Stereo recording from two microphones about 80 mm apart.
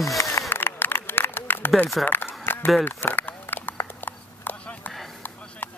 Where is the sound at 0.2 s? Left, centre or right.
Left.